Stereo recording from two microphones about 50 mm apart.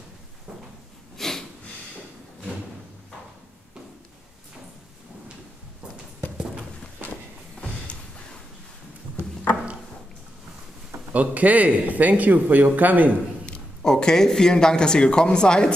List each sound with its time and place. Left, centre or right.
1.1 s snort: centre
10.9 s speech: right
13.5 s speech: centre